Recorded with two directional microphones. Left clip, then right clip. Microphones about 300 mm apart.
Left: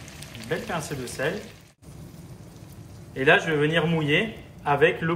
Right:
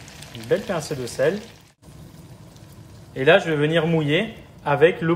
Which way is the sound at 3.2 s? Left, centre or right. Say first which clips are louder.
Right 3 dB; right.